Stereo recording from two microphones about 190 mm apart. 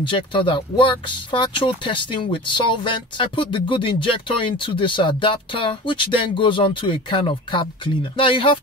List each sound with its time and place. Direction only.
0.0 s speech: 25° left (ahead or behind)